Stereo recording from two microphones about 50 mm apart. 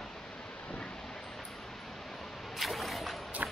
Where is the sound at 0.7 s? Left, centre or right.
Centre.